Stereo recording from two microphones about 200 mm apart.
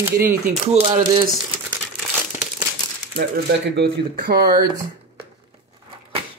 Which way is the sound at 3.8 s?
50° right (ahead or behind).